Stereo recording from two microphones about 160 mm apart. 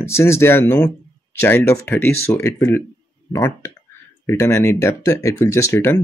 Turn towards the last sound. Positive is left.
turn(degrees=20)  # may be behind; listen again after turning